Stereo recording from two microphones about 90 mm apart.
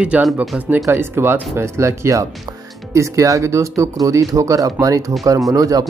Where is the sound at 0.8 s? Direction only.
25° right (ahead or behind).